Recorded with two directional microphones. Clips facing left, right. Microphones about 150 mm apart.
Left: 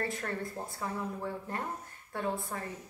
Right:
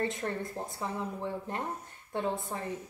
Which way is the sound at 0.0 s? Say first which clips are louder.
Right 2 dB; 20° right (ahead or behind).